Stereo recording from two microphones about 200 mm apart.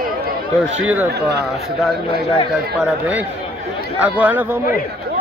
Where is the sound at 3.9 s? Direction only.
10° right (ahead or behind).